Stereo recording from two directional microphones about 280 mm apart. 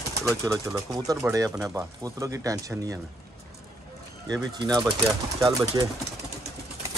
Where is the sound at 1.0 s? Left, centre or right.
Centre.